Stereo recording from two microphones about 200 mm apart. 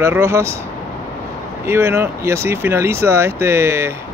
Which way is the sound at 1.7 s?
10° right (ahead or behind).